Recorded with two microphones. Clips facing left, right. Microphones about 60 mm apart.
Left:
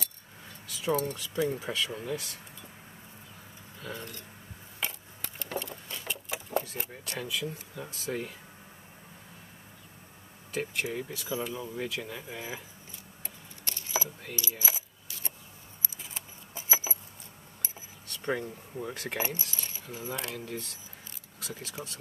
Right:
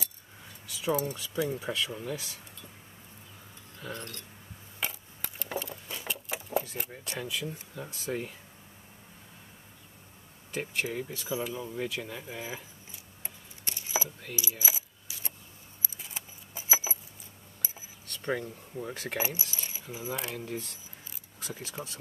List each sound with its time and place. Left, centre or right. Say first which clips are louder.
0.7 s speech: even; centre
3.9 s speech: even; centre
4.7 s a sound: even; centre
10.5 s speech: even; centre
13.2 s a sound: even; centre
14.3 s coin: right 1 dB; centre
16.0 s keys jangling: even; centre
18.1 s speech: even; centre
18.9 s keys jangling: even; centre
20.2 s speech: right 1 dB; centre
21.8 s speech: right 1 dB; centre